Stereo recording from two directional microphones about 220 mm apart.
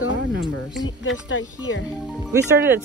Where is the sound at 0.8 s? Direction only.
60° left (ahead or behind).